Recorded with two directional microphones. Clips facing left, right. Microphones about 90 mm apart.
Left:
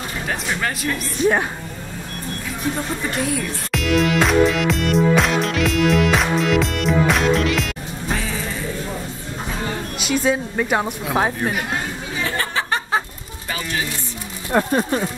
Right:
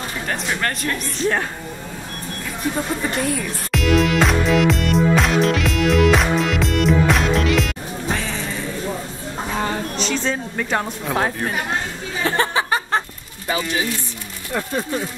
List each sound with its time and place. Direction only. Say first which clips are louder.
0.3 s speech: even; 5° left (ahead or behind)
3.0 s music: right 1 dB; centre (ahead or behind)
9.9 s a woman's voice: left 3 dB; 10° left (ahead or behind)
12.4 s a sound: right 6 dB; 25° right (ahead or behind)
14.5 s speech: left 6 dB; 45° left (ahead or behind)